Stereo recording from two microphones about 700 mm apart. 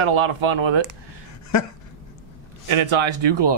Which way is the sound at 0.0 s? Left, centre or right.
Right.